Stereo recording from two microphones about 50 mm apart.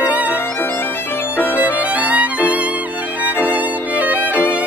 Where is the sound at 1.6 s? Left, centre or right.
Right.